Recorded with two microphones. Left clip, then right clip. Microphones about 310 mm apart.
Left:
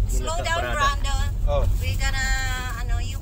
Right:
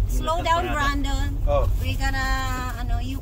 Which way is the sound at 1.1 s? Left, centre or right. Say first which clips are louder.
Right 2 dB; right.